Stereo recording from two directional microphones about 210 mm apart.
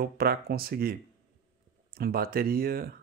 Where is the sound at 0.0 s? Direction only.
45° right (ahead or behind).